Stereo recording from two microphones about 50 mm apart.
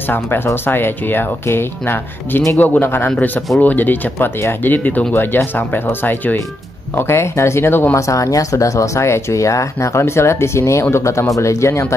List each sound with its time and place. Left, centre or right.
0.7 s speech: left
2.6 s speech: left
5.1 s speech: left
7.0 s speech: left
7.9 s speech: left